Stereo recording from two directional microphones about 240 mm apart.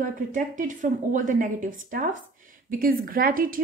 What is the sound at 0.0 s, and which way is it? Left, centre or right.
A woman's voice, right.